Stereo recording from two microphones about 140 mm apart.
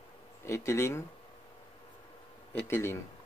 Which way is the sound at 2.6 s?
20° left (ahead or behind).